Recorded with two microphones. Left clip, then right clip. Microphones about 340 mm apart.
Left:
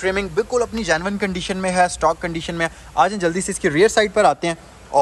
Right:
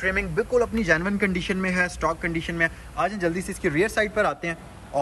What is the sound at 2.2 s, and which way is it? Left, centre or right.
Speech, left.